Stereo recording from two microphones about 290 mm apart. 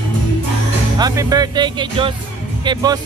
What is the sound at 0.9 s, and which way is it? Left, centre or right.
Speech, centre.